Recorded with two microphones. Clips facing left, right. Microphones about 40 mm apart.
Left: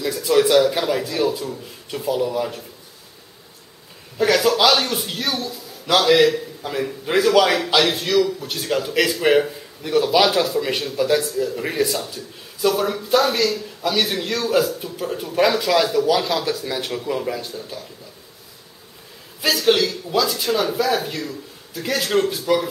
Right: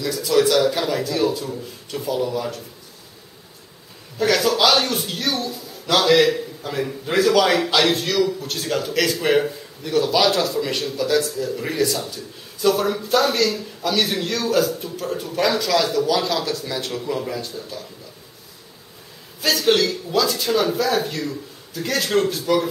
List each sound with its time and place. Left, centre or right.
0.0 s a man's voice: centre
4.2 s a man's voice: centre
19.4 s speech: centre